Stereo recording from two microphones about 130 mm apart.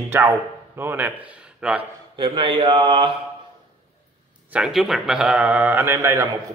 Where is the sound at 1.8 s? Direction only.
40° right (ahead or behind).